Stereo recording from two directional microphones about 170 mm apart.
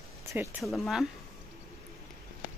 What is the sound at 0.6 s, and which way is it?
Speech, centre (ahead or behind).